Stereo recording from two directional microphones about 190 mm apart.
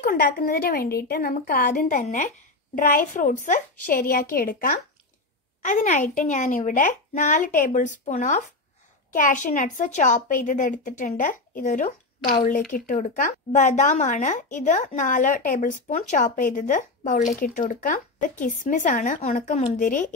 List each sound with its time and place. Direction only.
0.0 s a woman's voice: 50° left (ahead or behind)